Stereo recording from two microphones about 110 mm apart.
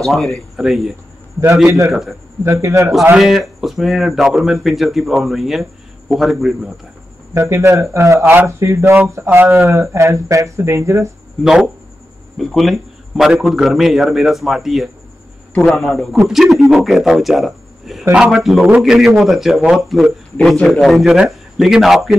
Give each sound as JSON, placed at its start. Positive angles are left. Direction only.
{"t": 0.0, "sound": "speech", "side_deg": 5}
{"t": 2.4, "sound": "speech", "side_deg": -25}
{"t": 3.2, "sound": "speech", "side_deg": -5}
{"t": 7.3, "sound": "speech", "side_deg": -25}
{"t": 12.4, "sound": "a man's voice", "side_deg": 0}
{"t": 20.3, "sound": "a man's voice", "side_deg": 10}